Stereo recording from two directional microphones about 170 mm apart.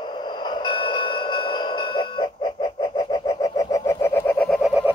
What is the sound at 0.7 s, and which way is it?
Alarm clock, 25° left (ahead or behind).